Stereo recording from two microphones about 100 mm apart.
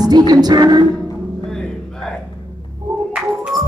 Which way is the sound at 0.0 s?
45° right (ahead or behind).